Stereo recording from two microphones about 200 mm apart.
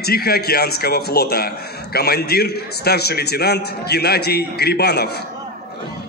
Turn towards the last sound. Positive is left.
turn(degrees=55)  # may be behind; listen again after turning